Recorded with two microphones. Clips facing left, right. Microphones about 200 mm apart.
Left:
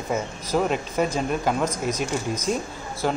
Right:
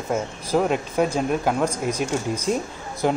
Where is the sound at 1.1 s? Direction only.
10° right (ahead or behind).